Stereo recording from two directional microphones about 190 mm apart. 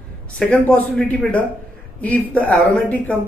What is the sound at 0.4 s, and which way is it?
Speech, 5° left (ahead or behind).